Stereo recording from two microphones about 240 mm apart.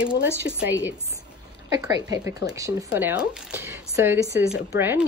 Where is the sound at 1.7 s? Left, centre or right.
Centre.